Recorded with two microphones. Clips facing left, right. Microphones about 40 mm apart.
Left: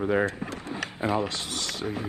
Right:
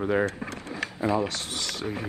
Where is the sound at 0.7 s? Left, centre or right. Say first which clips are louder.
Right 1 dB; left.